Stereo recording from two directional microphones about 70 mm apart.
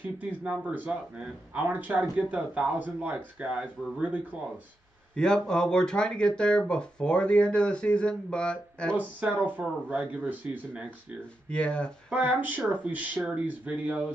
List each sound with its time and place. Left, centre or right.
0.2 s speech: centre
5.1 s speech: centre
9.2 s speech: right
11.5 s speech: centre
12.1 s speech: right